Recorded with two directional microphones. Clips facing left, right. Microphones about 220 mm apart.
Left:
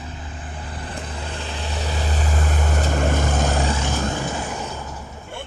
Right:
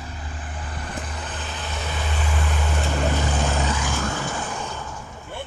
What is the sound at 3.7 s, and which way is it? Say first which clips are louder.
Vehicle: left 2 dB; 25° left (ahead or behind).